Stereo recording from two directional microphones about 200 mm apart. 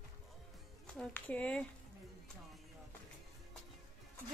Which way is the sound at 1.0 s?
5° left (ahead or behind).